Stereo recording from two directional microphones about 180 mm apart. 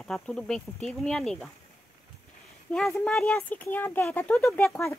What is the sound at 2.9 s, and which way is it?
Speech, 5° left (ahead or behind).